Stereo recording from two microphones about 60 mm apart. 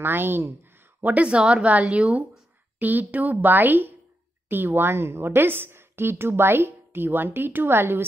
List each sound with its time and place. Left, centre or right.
0.0 s speech: right
1.1 s a woman's voice: centre; by 8.0 s right